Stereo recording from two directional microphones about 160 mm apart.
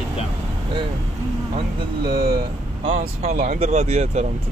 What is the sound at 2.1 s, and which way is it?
Speech, 75° right (ahead or behind).